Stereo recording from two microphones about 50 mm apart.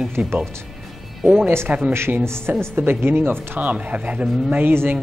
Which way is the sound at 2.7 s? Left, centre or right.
Right.